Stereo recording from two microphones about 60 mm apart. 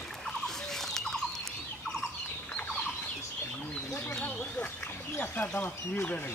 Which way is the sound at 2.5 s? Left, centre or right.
Left.